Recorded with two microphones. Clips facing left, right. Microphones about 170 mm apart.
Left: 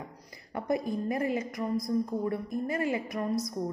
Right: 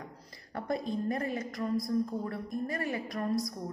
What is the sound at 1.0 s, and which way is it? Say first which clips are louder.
A woman's voice: left 3 dB; 15° left (ahead or behind).